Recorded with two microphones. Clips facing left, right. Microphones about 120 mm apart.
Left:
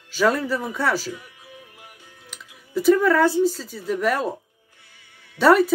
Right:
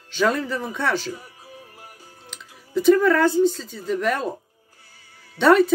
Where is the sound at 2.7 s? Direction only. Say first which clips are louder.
Right 1 dB; 5° left (ahead or behind).